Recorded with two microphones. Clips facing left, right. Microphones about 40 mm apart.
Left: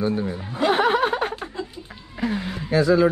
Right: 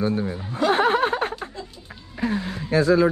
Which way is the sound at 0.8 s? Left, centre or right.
Left.